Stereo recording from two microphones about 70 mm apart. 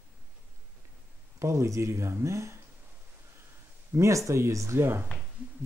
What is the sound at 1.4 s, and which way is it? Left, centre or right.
Speech, right.